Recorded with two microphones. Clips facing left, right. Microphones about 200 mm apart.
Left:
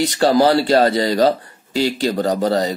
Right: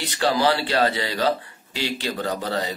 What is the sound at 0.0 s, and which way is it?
Speech, 45° left (ahead or behind).